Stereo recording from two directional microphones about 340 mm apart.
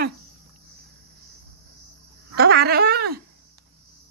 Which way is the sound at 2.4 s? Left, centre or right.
Right.